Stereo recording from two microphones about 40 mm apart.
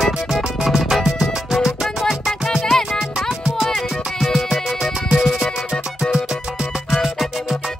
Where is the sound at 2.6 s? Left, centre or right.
Centre.